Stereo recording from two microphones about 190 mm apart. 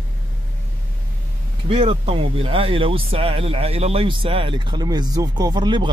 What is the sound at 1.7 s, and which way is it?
Speech, 30° right (ahead or behind).